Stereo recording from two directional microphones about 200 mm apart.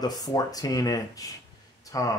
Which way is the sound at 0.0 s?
20° left (ahead or behind).